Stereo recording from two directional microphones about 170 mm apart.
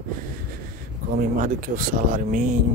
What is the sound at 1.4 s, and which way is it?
Speech, 55° right (ahead or behind).